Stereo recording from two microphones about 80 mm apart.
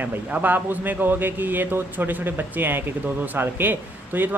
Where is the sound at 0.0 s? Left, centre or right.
Right.